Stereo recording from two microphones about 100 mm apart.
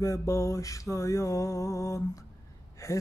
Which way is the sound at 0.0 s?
30° left (ahead or behind).